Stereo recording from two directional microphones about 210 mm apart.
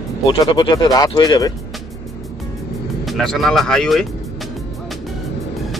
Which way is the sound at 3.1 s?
Centre (ahead or behind).